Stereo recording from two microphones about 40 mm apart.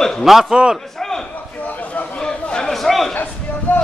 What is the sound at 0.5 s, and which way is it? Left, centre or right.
Speech, right.